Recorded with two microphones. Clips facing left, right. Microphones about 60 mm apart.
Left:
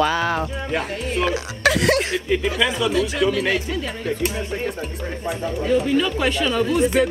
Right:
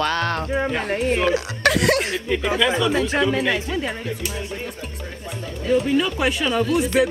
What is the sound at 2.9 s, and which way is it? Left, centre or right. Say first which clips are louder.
Speech: right 1 dB; right.